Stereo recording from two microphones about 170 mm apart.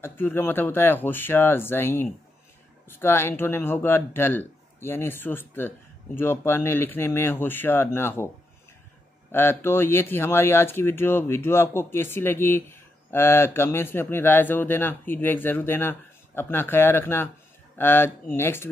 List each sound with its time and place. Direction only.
0.0 s speech: 10° left (ahead or behind)
9.3 s speech: 15° left (ahead or behind)